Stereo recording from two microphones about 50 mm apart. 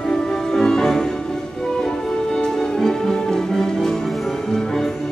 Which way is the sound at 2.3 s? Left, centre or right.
Centre.